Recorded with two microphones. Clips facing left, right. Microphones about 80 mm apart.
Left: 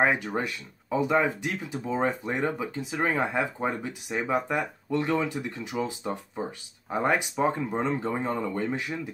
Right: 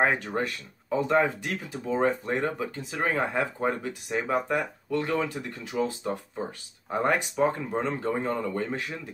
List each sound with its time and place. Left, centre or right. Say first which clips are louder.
0.0 s speech: even; centre